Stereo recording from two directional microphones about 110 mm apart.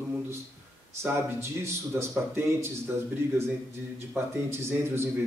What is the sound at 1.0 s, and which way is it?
Speech, 25° right (ahead or behind).